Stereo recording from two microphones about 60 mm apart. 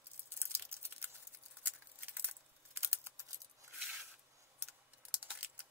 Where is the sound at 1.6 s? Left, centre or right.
Right.